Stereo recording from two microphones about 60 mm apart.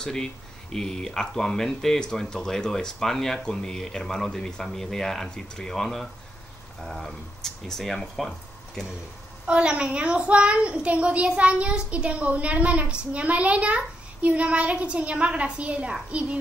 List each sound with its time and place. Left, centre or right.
0.0 s speech: centre
9.5 s a child's voice: centre